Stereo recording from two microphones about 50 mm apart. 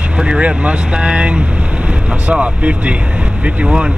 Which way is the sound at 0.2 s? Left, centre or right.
Centre.